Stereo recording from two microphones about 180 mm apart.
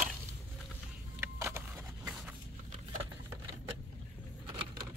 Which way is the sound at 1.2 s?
15° right (ahead or behind).